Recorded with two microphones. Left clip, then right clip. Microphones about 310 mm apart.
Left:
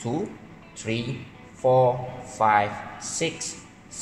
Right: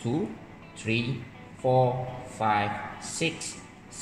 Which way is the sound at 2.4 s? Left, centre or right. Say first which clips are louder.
Left 6 dB; left.